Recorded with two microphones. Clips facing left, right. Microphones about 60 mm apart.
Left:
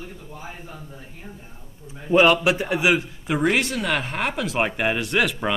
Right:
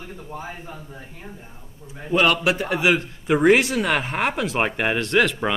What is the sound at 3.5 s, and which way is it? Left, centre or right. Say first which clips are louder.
Speech: right 4 dB; centre.